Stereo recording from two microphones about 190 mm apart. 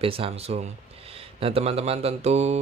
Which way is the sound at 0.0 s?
30° right (ahead or behind).